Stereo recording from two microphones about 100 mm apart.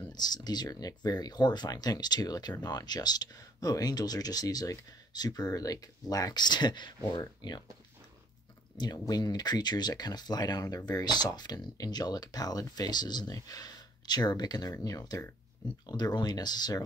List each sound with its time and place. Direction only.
0.1 s speech: 40° left (ahead or behind)
8.7 s speech: 45° left (ahead or behind)